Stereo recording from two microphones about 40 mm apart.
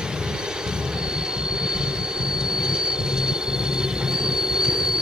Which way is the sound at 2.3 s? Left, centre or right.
Centre.